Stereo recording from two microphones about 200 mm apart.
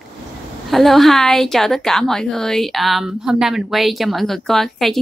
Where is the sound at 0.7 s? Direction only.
Centre (ahead or behind).